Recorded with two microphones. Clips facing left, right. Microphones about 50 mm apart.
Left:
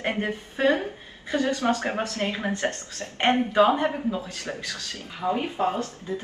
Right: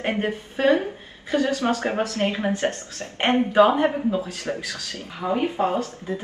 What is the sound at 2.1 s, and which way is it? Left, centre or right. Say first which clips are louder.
Speech: right 4 dB; right.